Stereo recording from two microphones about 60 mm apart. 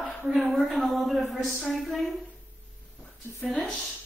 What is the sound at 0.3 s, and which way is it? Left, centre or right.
Speech, centre.